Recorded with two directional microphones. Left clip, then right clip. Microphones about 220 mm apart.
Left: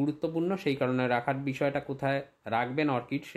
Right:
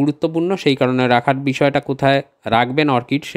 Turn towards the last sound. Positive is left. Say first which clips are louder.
# right 13 dB
turn(degrees=-40)  # may be behind; listen again after turning